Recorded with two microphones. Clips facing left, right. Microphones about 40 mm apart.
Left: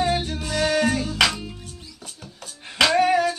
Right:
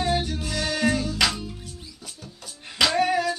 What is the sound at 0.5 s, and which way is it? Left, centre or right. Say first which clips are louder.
Music: left 4 dB; left.